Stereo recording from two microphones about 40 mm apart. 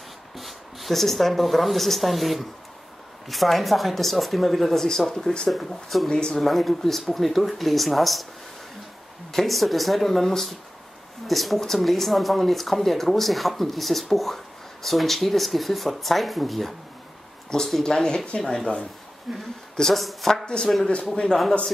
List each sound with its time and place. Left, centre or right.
0.4 s speech: centre
6.0 s speech: centre
6.3 s speech: centre
9.3 s speech: centre
17.5 s speech: centre
18.4 s speech: centre
19.3 s speech: centre
20.4 s speech: left